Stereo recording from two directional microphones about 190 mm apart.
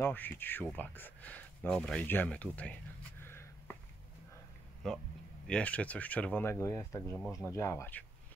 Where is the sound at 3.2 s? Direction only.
10° left (ahead or behind).